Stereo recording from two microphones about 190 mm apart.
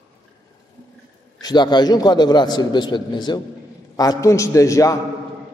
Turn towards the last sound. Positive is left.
turn(degrees=15)  # may be behind; listen again after turning